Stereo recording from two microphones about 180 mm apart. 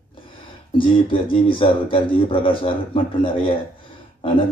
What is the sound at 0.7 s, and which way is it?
Speech, 30° left (ahead or behind).